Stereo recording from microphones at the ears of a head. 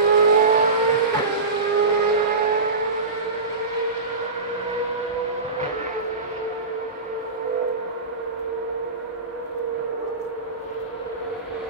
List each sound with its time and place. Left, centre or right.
0.1 s vehicle: right